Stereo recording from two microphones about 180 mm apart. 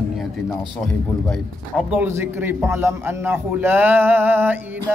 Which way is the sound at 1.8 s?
5° right (ahead or behind).